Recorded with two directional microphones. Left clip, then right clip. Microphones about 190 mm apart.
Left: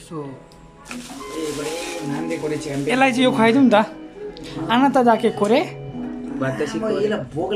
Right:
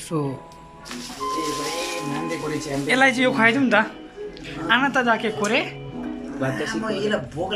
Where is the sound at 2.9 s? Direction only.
5° left (ahead or behind).